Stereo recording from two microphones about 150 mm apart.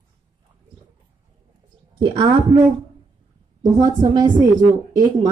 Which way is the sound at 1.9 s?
35° right (ahead or behind).